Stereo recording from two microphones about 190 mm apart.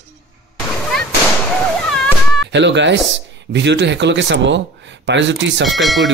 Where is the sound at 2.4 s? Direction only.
70° right (ahead or behind).